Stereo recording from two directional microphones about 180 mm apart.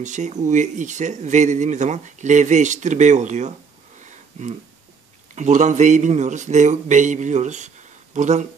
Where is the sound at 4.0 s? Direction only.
40° right (ahead or behind).